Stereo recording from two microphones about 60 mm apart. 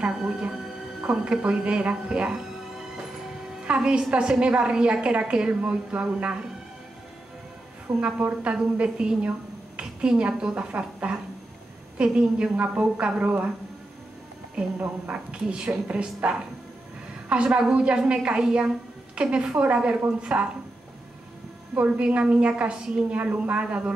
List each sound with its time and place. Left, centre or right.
0.1 s a woman's voice: centre
3.6 s a woman's voice: centre
8.0 s a woman's voice: right
14.5 s a woman's voice: right
17.3 s a woman's voice: centre
21.7 s a woman's voice: right